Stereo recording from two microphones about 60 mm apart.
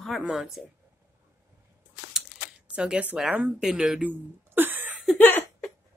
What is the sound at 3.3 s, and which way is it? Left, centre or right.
Speech, right.